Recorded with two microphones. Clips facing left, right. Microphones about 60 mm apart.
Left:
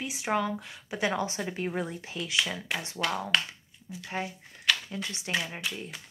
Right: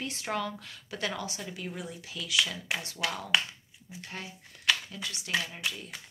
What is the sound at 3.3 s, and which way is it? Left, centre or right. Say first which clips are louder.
Speech: right 1 dB; centre.